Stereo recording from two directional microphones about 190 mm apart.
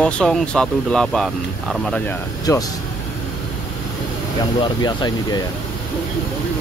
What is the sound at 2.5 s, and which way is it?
Speech, 15° left (ahead or behind).